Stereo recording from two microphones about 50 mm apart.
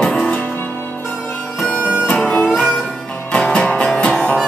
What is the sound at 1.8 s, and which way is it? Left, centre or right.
Music, right.